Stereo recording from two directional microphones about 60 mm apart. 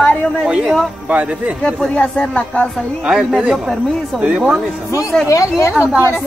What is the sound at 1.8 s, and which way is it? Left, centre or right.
Speech, centre.